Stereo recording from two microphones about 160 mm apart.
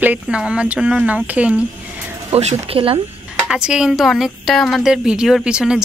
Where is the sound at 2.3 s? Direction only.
40° right (ahead or behind).